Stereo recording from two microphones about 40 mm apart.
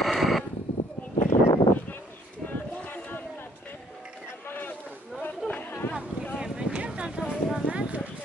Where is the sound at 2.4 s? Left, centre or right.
Left.